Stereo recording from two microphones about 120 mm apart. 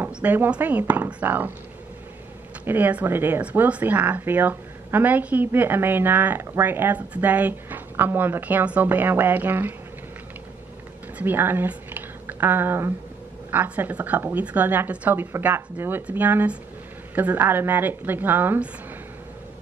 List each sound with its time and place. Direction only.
0.0 s speech: 15° right (ahead or behind)
2.6 s speech: 15° right (ahead or behind)
11.1 s speech: 15° right (ahead or behind)